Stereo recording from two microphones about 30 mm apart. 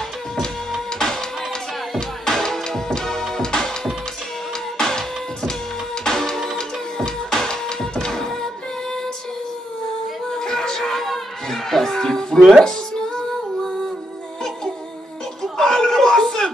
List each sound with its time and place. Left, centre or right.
0.9 s music: centre
4.7 s music: centre
10.3 s music: centre
15.5 s a sound: centre